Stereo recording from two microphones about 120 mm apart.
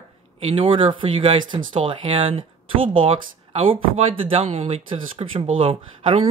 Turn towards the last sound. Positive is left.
turn(degrees=-50)  # may be behind; listen again after turning